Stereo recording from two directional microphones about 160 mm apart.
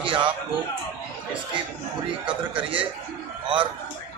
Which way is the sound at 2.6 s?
35° right (ahead or behind).